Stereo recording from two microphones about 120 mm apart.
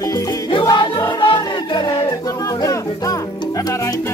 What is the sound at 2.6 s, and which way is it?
Music, 30° left (ahead or behind).